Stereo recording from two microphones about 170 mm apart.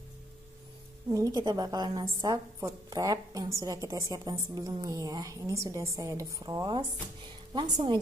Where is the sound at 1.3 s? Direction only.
25° right (ahead or behind).